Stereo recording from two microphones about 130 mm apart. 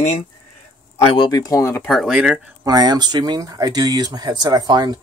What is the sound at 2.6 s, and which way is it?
Speech, 30° right (ahead or behind).